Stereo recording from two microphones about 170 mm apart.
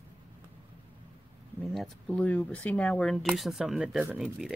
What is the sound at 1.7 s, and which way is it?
Speech, 5° left (ahead or behind).